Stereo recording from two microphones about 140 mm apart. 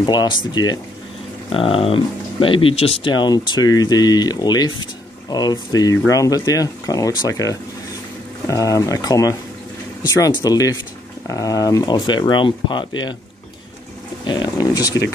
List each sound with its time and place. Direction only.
0.0 s speech: 30° left (ahead or behind)
1.5 s speech: 40° left (ahead or behind)
3.1 s speech: 30° left (ahead or behind)
14.2 s speech: 30° left (ahead or behind)